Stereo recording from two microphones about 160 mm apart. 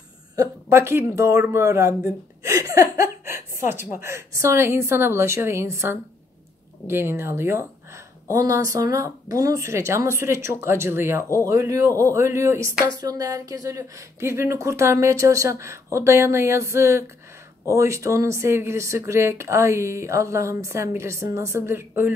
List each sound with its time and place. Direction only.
0.4 s speech: 15° right (ahead or behind)
2.4 s a sound: 20° right (ahead or behind)
3.9 s speech: 15° right (ahead or behind)